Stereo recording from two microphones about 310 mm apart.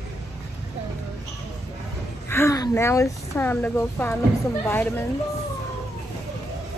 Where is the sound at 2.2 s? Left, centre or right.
Centre.